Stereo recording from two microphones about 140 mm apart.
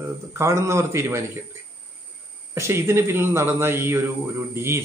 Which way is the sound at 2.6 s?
20° right (ahead or behind).